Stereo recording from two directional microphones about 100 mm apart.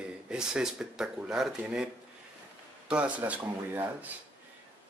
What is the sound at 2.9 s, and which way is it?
Speech, 15° right (ahead or behind).